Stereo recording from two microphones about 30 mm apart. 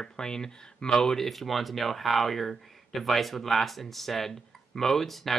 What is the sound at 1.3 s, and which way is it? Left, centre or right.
Speech, centre.